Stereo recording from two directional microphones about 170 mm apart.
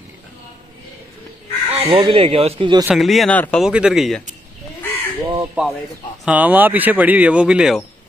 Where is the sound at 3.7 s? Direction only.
5° right (ahead or behind).